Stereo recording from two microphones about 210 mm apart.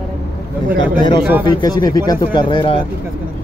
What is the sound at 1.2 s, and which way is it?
Speech, 10° right (ahead or behind).